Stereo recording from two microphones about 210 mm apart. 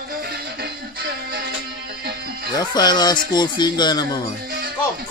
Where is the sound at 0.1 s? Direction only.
45° right (ahead or behind).